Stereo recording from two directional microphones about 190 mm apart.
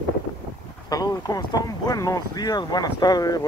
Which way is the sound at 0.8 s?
20° left (ahead or behind).